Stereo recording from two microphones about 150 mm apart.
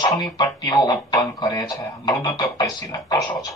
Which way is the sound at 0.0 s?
25° left (ahead or behind).